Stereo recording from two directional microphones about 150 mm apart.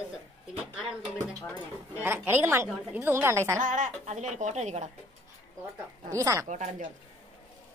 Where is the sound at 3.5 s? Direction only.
55° right (ahead or behind).